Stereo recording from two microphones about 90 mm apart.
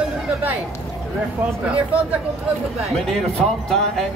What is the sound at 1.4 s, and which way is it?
Speech, 15° right (ahead or behind).